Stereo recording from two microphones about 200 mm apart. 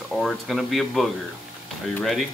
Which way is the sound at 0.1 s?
Centre (ahead or behind).